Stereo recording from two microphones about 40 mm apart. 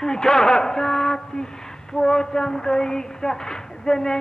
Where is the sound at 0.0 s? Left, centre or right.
Centre.